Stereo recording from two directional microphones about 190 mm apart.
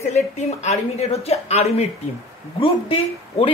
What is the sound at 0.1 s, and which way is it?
A woman's voice, 35° left (ahead or behind).